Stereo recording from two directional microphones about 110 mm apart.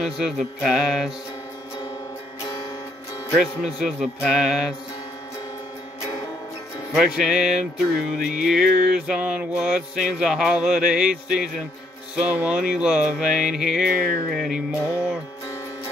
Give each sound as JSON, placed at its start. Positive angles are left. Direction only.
{"t": 0.0, "sound": "music", "side_deg": -5}
{"t": 2.4, "sound": "music", "side_deg": 40}
{"t": 3.3, "sound": "music", "side_deg": -5}
{"t": 6.9, "sound": "music", "side_deg": -5}